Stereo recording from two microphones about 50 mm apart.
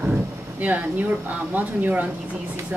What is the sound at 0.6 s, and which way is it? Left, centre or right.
Speech, right.